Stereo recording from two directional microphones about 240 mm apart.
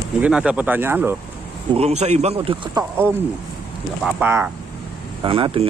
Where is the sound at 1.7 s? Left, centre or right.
Right.